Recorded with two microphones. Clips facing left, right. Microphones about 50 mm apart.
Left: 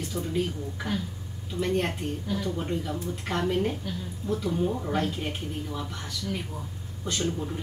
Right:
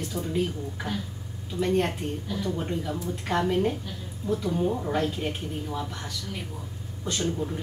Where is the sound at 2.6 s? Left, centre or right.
Centre.